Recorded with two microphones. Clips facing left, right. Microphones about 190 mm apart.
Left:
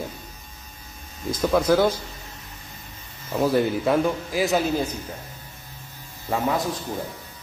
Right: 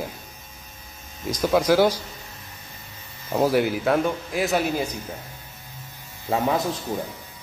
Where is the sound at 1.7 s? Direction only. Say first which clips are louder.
Right 1 dB; 10° right (ahead or behind).